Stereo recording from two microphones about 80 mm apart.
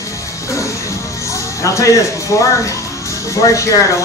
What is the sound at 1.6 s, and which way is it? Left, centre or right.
Speech, left.